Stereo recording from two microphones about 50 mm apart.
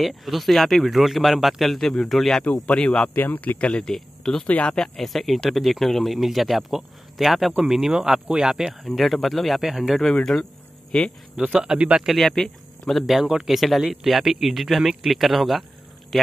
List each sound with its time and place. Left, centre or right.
0.0 s a man's voice: centre
2.6 s speech: left
3.2 s speech: left
3.8 s speech: centre
4.5 s speech: left
4.7 s a man's voice: centre
8.8 s a man's voice: centre
9.6 s speech: centre
10.3 s speech: centre
11.4 s speech: right
12.2 s speech: centre
13.0 s speech: centre
13.5 s a man's voice: centre